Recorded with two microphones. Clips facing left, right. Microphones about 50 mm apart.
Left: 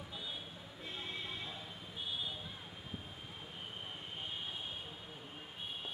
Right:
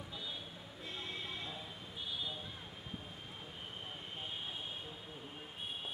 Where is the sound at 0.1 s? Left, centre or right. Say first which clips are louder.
Left 1 dB; centre.